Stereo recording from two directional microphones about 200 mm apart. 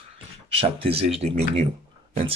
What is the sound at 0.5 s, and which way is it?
Speech, 30° right (ahead or behind).